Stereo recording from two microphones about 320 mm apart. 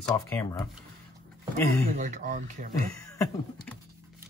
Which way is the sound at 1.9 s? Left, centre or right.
Right.